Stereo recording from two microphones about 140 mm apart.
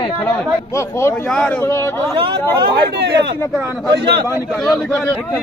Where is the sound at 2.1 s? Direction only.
35° right (ahead or behind).